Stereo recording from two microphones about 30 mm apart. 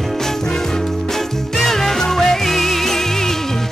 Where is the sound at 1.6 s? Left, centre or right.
Centre.